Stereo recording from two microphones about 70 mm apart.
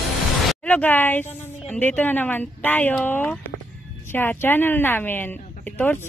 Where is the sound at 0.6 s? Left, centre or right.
Left.